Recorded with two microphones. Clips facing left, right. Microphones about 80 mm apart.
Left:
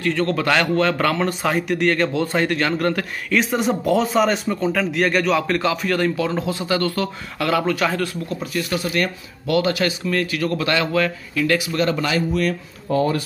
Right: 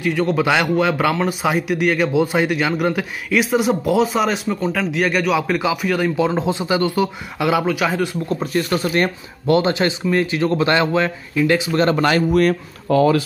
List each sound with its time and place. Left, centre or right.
0.0 s speech: centre
6.1 s speech: right
8.3 s speech: right
12.9 s speech: right